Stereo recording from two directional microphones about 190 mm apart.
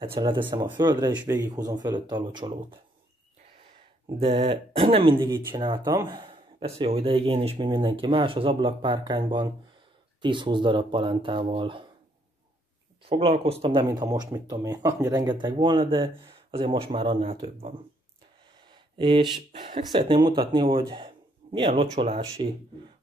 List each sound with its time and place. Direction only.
0.0 s speech: 25° right (ahead or behind)
4.2 s speech: 30° right (ahead or behind)
13.0 s speech: 30° right (ahead or behind)
13.7 s speech: 20° right (ahead or behind)
18.9 s speech: 25° right (ahead or behind)